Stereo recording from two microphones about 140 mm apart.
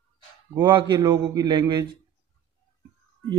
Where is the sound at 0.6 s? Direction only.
35° right (ahead or behind).